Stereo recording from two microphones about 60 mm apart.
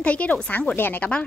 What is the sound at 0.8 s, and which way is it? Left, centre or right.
Speech, left.